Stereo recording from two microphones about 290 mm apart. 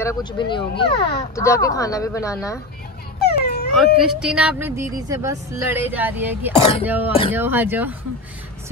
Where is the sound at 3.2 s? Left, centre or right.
Left.